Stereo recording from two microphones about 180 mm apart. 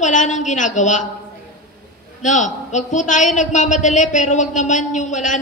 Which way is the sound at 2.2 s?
45° left (ahead or behind).